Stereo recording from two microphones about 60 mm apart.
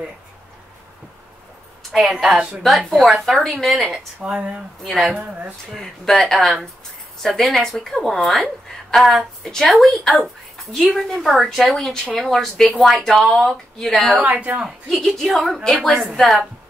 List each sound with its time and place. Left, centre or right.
1.8 s a woman's voice: centre
2.3 s a woman's voice: centre
2.9 s speech: centre
4.2 s a woman's voice: centre
4.8 s speech: centre
5.1 s a woman's voice: right
5.7 s speech: centre
14.2 s a woman's voice: right
14.9 s speech: centre